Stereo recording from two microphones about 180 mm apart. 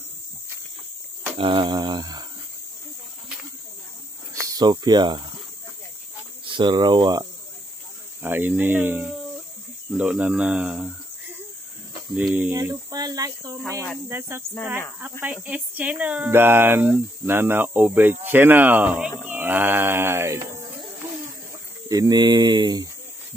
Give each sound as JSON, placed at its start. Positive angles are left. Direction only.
{"t": 1.4, "sound": "speech", "side_deg": -30}
{"t": 4.3, "sound": "speech", "side_deg": -20}
{"t": 6.4, "sound": "speech", "side_deg": -25}
{"t": 8.2, "sound": "speech", "side_deg": -10}
{"t": 12.2, "sound": "speech", "side_deg": -10}
{"t": 21.8, "sound": "speech", "side_deg": -20}